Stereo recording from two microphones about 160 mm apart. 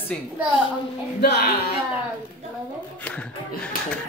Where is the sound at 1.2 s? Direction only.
80° left.